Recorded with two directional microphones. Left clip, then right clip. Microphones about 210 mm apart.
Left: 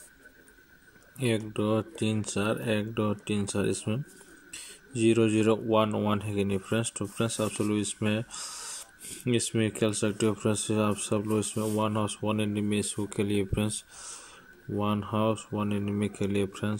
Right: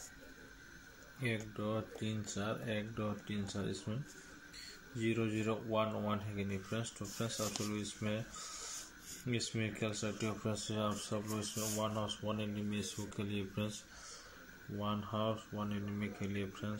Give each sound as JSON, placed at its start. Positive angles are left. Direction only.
{"t": 1.2, "sound": "speech", "side_deg": 55}
{"t": 4.9, "sound": "speech", "side_deg": 55}
{"t": 9.2, "sound": "speech", "side_deg": 55}
{"t": 14.8, "sound": "speech", "side_deg": 50}